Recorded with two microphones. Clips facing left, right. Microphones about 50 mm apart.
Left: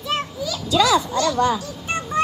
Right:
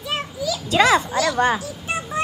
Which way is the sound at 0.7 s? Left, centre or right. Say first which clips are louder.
Right 1 dB; right.